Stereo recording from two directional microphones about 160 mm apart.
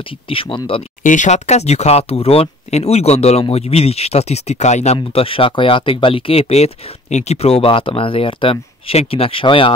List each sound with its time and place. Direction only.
0.3 s speech: 35° left (ahead or behind)
1.0 s speech: 50° left (ahead or behind)
4.9 s speech: 35° left (ahead or behind)